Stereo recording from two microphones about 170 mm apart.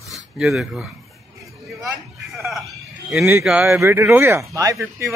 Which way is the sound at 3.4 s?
10° right (ahead or behind).